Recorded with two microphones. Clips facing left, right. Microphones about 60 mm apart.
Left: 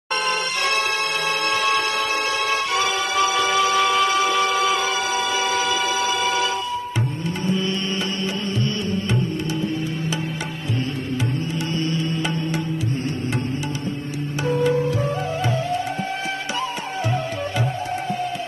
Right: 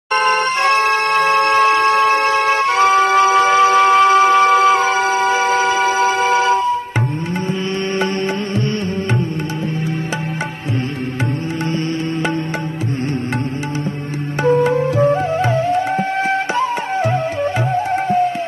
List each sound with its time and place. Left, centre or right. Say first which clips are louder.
0.1 s music: right 8 dB; right
14.4 s music: right 6 dB; right